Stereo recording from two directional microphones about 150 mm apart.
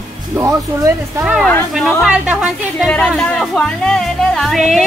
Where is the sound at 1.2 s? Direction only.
5° right (ahead or behind).